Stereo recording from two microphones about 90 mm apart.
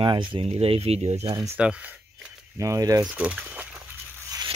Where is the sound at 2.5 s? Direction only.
40° right (ahead or behind).